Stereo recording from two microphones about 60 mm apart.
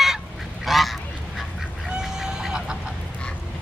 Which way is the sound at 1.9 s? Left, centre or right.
Centre.